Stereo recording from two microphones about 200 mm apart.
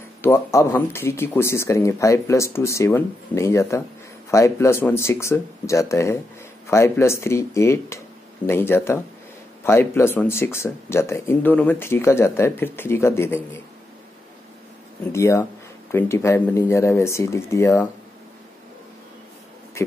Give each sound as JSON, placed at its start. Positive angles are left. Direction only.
{"t": 0.2, "sound": "speech", "side_deg": 15}
{"t": 15.1, "sound": "speech", "side_deg": 15}